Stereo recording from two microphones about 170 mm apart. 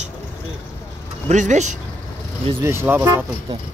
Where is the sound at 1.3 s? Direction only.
45° right (ahead or behind).